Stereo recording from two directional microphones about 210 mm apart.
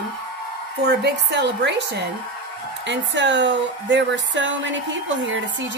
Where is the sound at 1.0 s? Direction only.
55° right (ahead or behind).